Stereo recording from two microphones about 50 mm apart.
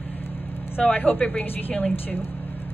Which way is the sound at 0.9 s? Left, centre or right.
Left.